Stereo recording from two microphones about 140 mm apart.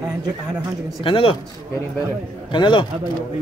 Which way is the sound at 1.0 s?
40° left (ahead or behind).